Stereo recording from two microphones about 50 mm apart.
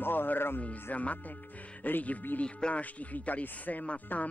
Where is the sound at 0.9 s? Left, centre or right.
Left.